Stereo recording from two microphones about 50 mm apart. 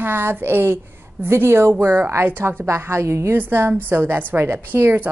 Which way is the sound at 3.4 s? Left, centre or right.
Right.